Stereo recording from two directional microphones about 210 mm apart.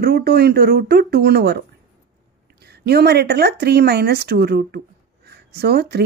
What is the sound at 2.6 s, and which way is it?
Speech, 50° right (ahead or behind).